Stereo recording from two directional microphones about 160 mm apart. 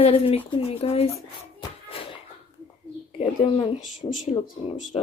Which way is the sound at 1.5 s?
30° left (ahead or behind).